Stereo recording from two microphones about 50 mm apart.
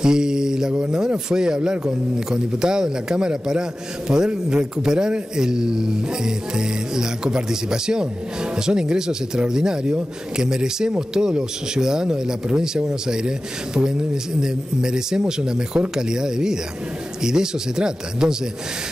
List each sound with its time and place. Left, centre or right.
0.0 s a man's voice: centre